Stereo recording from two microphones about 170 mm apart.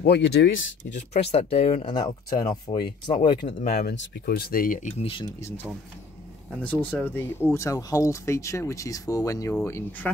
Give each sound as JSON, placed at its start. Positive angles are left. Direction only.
{"t": 0.0, "sound": "speech", "side_deg": 80}
{"t": 0.9, "sound": "speech", "side_deg": 40}
{"t": 3.6, "sound": "speech", "side_deg": 70}
{"t": 6.6, "sound": "speech", "side_deg": 10}